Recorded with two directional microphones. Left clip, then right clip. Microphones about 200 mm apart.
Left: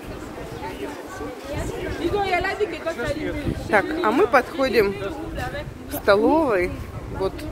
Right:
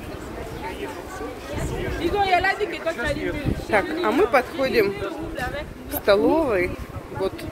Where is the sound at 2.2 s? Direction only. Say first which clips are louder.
Right 5 dB; 30° right (ahead or behind).